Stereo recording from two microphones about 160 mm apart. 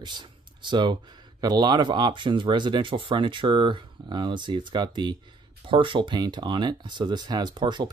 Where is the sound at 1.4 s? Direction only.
25° right (ahead or behind).